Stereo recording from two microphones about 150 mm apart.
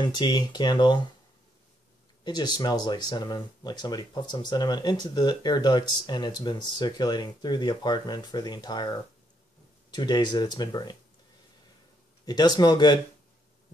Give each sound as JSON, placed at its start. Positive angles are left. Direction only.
{"t": 0.0, "sound": "speech", "side_deg": 30}
{"t": 2.2, "sound": "speech", "side_deg": 30}
{"t": 12.3, "sound": "speech", "side_deg": 30}